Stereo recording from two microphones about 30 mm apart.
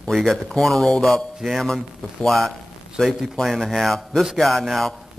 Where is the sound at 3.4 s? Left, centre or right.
Centre.